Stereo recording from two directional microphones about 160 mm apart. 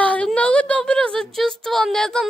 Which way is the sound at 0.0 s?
10° left (ahead or behind).